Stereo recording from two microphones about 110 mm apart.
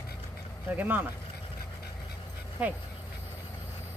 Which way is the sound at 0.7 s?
15° right (ahead or behind).